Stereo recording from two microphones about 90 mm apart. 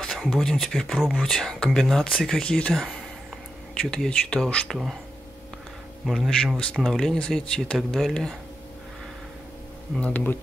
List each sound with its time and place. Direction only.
0.0 s a sound: 5° left (ahead or behind)
0.3 s speech: 5° left (ahead or behind)
1.2 s speech: 5° left (ahead or behind)
6.0 s speech: centre (ahead or behind)
9.9 s speech: 15° left (ahead or behind)